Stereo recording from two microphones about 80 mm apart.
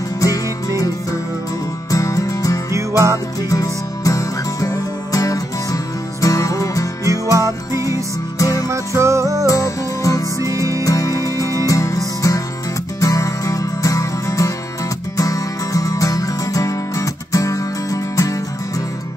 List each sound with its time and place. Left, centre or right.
0.2 s music: left
7.1 s music: right
8.4 s music: left
8.6 s music: right
9.5 s music: left
10.4 s music: right
10.8 s music: left